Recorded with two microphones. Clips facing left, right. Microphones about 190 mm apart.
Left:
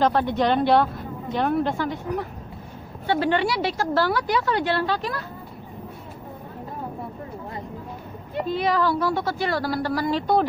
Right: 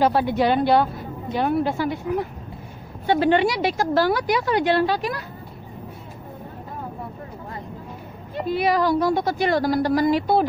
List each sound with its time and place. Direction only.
0.0 s a woman's voice: 10° right (ahead or behind)
3.1 s speech: 15° right (ahead or behind)
8.5 s speech: 10° right (ahead or behind)